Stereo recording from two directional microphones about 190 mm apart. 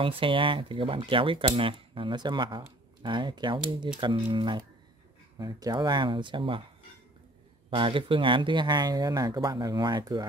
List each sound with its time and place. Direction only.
0.0 s speech: 25° right (ahead or behind)
7.7 s speech: 25° right (ahead or behind)